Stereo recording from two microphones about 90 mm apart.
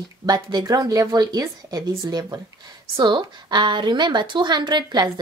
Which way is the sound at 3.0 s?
60° right (ahead or behind).